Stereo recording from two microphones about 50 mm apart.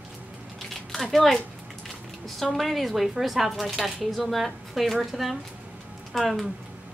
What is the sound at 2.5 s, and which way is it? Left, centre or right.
Speech, centre.